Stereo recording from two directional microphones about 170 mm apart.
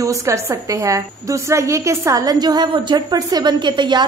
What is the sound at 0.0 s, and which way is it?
A woman's voice, 20° right (ahead or behind).